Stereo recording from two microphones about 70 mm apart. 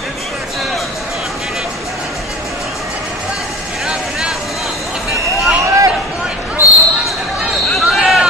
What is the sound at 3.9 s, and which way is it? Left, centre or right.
Vehicle, centre.